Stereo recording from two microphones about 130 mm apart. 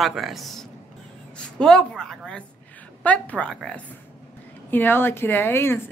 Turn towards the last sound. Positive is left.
turn(degrees=15)  # may be behind; listen again after turning